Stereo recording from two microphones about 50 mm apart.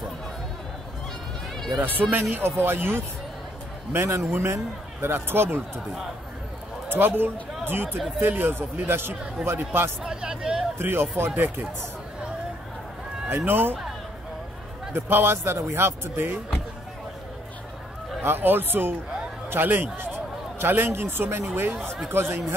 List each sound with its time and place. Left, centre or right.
1.8 s a man's voice: right
6.9 s a man's voice: right
10.0 s hubbub: centre
10.8 s a man's voice: right
13.5 s a man's voice: right
14.9 s a man's voice: right
18.2 s a man's voice: right